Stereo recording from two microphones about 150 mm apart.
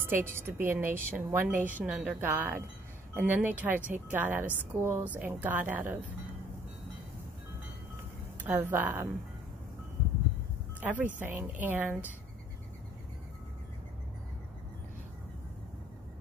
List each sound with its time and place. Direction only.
0.0 s a woman's voice: 15° right (ahead or behind)
8.5 s a woman's voice: 10° right (ahead or behind)
10.8 s a woman's voice: 10° right (ahead or behind)